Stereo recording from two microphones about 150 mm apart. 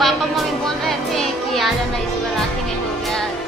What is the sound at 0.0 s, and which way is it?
Music, centre (ahead or behind).